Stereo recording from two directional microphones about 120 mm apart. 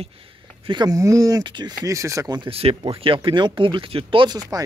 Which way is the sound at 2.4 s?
55° right (ahead or behind).